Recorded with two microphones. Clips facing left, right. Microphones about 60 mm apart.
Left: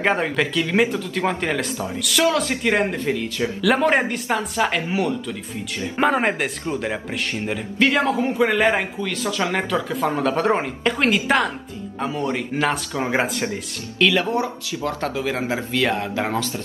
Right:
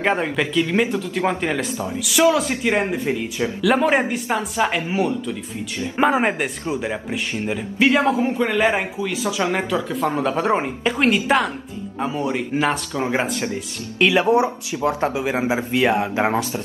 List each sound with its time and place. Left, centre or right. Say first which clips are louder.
0.0 s speech: even; centre
3.1 s speech: even; centre
3.6 s speech: right 1 dB; centre
13.9 s speech: right 3 dB; right